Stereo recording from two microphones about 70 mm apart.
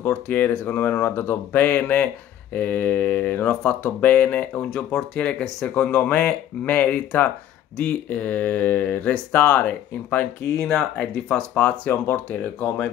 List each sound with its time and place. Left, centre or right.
0.0 s speech: left
4.6 s speech: centre; by 10.7 s left
10.7 s speech: centre
11.2 s speech: centre
12.3 s speech: centre